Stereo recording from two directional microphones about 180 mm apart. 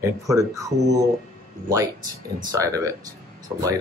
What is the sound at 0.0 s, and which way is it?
Speech, 20° right (ahead or behind).